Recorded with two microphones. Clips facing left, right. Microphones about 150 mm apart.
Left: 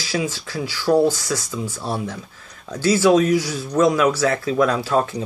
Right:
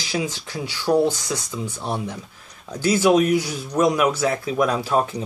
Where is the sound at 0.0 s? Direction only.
20° right (ahead or behind).